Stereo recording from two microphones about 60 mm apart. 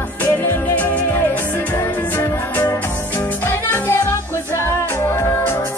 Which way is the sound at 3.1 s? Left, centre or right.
Left.